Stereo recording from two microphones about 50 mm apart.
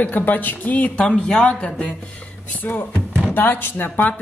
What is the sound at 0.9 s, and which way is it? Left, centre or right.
Speech, centre.